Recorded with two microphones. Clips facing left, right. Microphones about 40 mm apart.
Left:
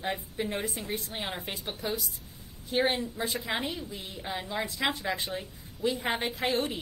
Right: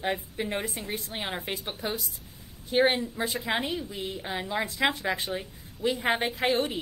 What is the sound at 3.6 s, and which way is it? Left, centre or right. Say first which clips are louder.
A woman's voice: right 4 dB; right.